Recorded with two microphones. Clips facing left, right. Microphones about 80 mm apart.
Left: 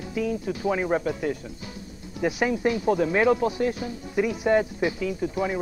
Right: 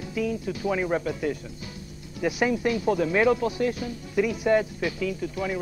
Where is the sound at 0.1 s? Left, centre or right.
Left.